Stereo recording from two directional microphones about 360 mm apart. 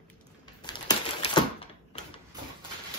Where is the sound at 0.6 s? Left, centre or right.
Centre.